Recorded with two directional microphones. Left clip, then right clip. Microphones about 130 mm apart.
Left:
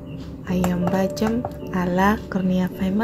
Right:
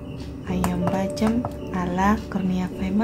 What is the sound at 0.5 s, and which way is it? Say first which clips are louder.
A woman's voice: left 2 dB; 25° left (ahead or behind).